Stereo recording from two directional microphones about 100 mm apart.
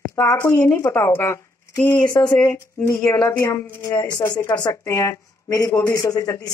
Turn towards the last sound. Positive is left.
turn(degrees=30)  # may be behind; listen again after turning